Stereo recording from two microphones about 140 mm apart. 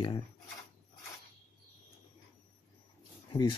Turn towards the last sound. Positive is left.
turn(degrees=30)  # may be behind; listen again after turning